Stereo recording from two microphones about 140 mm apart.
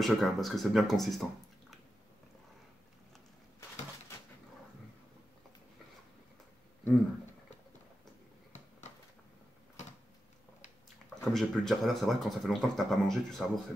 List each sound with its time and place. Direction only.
0.0 s speech: centre (ahead or behind)
11.3 s speech: centre (ahead or behind)